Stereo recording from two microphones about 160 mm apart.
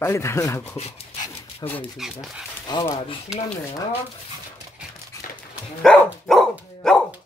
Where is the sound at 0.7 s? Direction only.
40° left (ahead or behind).